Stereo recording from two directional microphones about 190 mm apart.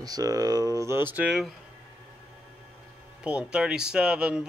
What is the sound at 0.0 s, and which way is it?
Speech, 20° right (ahead or behind).